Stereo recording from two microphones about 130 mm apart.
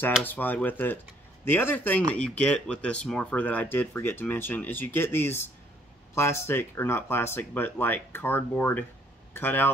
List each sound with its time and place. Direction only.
0.2 s speech: 15° left (ahead or behind)